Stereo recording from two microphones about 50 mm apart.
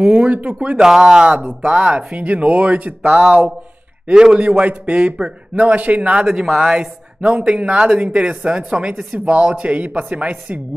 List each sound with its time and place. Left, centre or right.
0.0 s speech: right
0.7 s speech: centre
1.3 s speech: right
6.2 s speech: centre; by 7.7 s right
7.7 s speech: centre
9.3 s speech: right